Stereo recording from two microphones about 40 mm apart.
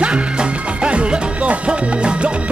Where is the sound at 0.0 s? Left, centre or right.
Right.